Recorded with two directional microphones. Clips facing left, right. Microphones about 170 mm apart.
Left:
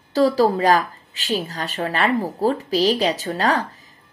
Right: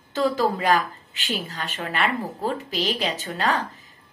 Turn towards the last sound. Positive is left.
turn(degrees=40)  # may be behind; listen again after turning